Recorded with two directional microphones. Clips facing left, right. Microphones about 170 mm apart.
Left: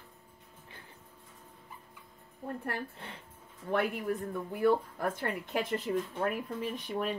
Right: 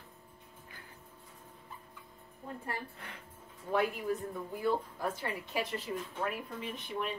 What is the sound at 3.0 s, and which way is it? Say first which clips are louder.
Speech: left 2 dB; 25° left (ahead or behind).